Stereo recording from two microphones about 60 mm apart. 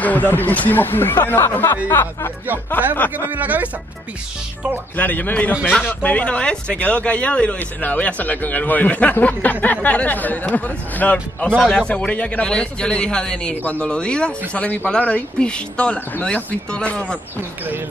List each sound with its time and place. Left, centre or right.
0.0 s speech: left
2.7 s speech: left
3.3 s speech: right
4.9 s speech: left
14.5 s speech: left